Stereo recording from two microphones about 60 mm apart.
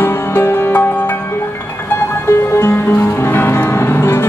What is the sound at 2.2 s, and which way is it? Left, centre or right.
Music, left.